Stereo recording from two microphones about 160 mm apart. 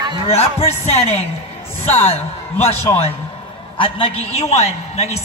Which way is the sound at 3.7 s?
35° left (ahead or behind).